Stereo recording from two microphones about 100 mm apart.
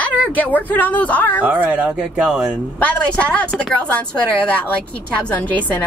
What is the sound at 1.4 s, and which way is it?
Speech, 15° right (ahead or behind).